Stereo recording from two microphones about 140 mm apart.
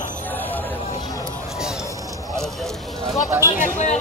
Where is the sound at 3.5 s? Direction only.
65° left (ahead or behind).